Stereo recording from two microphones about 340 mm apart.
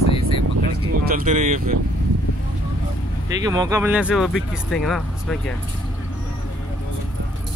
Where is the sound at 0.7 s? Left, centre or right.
Right.